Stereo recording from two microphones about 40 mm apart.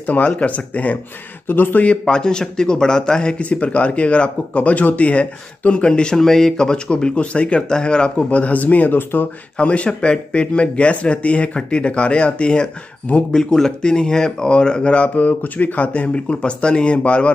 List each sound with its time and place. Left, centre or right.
0.0 s speech: left
1.5 s a man's voice: left
2.0 s speech: centre
6.1 s speech: centre
8.3 s speech: left
9.6 s speech: left